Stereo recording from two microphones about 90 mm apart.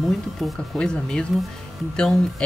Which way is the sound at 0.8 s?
10° left (ahead or behind).